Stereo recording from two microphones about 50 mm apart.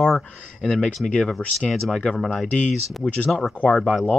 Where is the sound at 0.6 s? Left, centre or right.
Centre.